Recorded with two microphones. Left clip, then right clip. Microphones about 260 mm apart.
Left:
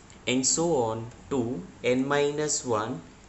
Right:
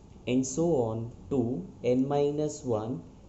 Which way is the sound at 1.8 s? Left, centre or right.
Centre.